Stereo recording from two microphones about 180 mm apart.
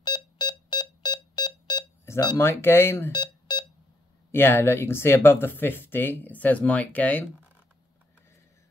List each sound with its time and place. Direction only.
0.0 s smoke detector: 25° left (ahead or behind)
3.1 s beep: 25° left (ahead or behind)
4.3 s speech: 10° left (ahead or behind)